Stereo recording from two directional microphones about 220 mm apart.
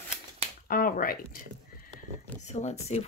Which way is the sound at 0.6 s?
40° left (ahead or behind).